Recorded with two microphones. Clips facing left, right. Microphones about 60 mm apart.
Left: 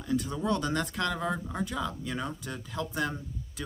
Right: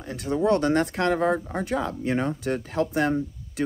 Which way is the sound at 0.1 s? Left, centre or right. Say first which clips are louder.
Right 7 dB; right.